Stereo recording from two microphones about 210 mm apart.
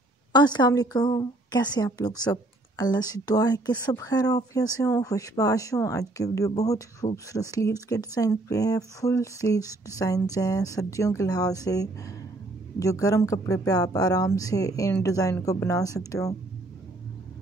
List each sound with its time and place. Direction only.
0.3 s a woman's voice: 20° left (ahead or behind)